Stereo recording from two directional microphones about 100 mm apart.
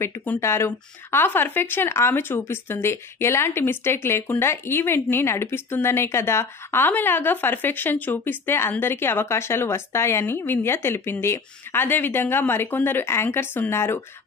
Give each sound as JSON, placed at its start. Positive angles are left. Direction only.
{"t": 0.4, "sound": "speech", "side_deg": 25}